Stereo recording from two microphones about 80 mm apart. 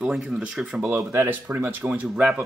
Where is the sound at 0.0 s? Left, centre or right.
Centre.